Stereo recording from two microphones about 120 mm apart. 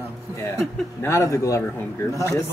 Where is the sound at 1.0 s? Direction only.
25° left (ahead or behind).